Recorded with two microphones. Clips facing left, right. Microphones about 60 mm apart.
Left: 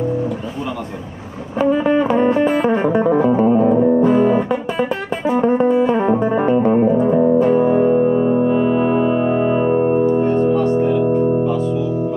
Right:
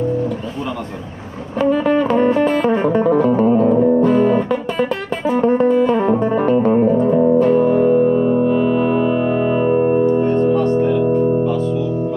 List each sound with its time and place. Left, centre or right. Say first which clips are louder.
1.6 s music: even; left
10.2 s music: even; left